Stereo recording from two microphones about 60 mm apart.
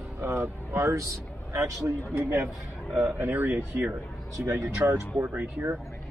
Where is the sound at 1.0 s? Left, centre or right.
Right.